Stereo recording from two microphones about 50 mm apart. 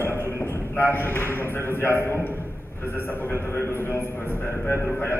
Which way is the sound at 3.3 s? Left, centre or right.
Left.